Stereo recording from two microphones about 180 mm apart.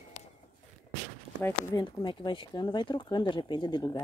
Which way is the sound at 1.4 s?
25° left (ahead or behind).